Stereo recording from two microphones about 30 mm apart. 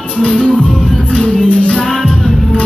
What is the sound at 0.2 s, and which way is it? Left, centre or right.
Music, left.